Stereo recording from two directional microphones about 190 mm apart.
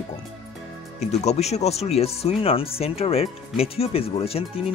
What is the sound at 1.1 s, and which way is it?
Speech, 35° left (ahead or behind).